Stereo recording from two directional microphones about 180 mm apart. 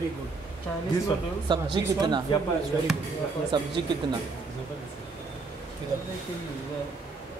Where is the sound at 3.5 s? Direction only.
25° right (ahead or behind).